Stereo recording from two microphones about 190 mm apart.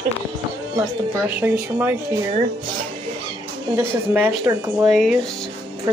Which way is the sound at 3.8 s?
10° right (ahead or behind).